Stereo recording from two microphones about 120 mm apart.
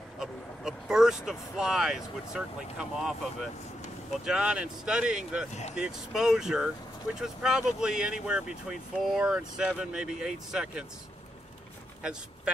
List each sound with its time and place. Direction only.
0.2 s speech: 5° right (ahead or behind)
5.5 s speech: 70° left (ahead or behind)
5.8 s speech: 5° right (ahead or behind)